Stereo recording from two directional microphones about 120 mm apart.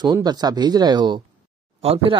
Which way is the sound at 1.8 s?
55° right (ahead or behind).